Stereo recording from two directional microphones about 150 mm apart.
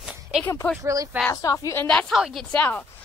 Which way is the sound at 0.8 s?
25° right (ahead or behind).